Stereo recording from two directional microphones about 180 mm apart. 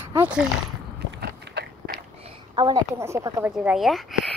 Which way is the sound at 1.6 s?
70° right (ahead or behind).